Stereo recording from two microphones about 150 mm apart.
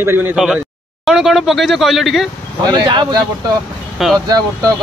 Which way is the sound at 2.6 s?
30° right (ahead or behind).